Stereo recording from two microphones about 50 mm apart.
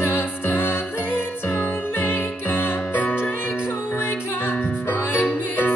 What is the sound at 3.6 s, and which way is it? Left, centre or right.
Music, left.